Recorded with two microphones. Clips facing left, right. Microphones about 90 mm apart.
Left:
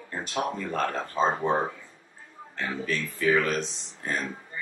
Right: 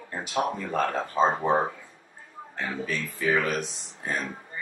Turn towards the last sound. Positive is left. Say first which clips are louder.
# even
turn(degrees=-10)  # may be behind; listen again after turning